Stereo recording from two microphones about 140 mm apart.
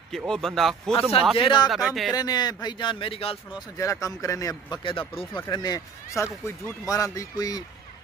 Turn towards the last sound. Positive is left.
turn(degrees=25)  # may be behind; listen again after turning